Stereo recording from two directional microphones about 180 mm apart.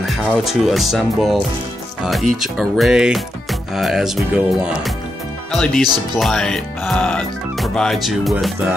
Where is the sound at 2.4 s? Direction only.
Centre (ahead or behind).